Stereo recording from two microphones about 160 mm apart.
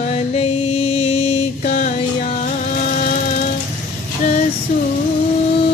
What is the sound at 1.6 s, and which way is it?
Music, 55° left (ahead or behind).